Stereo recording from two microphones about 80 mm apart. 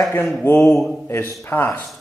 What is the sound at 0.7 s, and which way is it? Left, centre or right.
Speech, centre.